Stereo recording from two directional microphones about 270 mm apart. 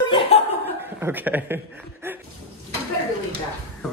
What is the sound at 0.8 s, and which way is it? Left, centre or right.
Speech, centre.